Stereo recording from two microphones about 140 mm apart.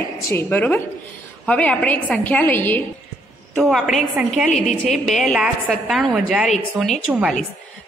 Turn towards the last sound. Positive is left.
turn(degrees=-5)  # may be behind; listen again after turning